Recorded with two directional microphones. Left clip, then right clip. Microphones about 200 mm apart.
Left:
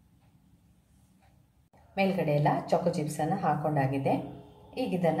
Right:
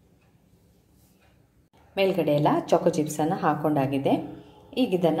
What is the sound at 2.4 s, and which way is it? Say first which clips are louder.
A woman's voice: right 4 dB; 35° right (ahead or behind).